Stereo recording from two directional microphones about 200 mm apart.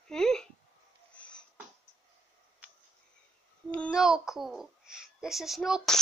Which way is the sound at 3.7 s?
Centre (ahead or behind).